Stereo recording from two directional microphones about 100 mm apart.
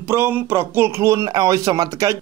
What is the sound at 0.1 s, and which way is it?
A man's voice, 25° right (ahead or behind).